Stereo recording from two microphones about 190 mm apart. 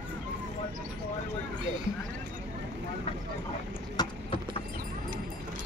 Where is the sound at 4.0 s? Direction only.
20° left (ahead or behind).